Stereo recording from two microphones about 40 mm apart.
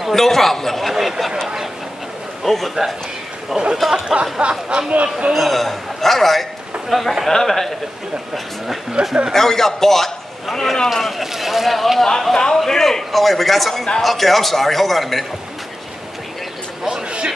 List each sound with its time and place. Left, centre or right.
0.1 s a man's voice: centre
2.4 s speech: centre
3.6 s speech: right
5.3 s a man's voice: centre
9.0 s speech: right
9.3 s a man's voice: centre
10.9 s a man's voice: centre
16.8 s a sound: right